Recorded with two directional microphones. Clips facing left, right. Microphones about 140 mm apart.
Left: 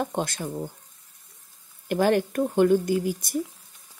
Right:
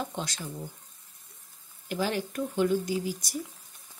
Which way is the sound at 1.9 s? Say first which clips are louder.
Left 8 dB; 55° left (ahead or behind).